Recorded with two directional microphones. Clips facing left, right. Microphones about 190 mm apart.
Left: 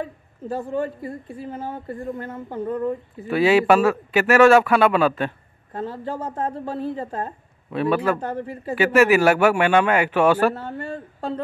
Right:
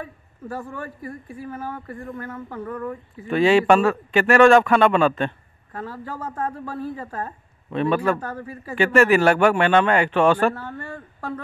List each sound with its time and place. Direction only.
0.0 s a woman's voice: 25° left (ahead or behind)
3.3 s a man's voice: 5° left (ahead or behind)
5.7 s speech: 25° left (ahead or behind)
7.7 s a man's voice: 5° left (ahead or behind)
8.2 s speech: 25° left (ahead or behind)
8.7 s a man's voice: 5° left (ahead or behind)
10.5 s speech: 25° left (ahead or behind)